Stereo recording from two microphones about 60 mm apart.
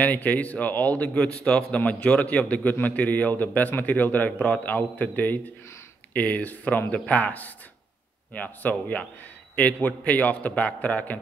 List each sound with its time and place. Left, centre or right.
0.0 s a man's voice: left